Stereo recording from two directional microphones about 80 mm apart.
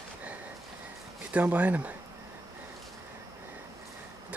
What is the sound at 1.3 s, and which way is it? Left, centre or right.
Speech, centre.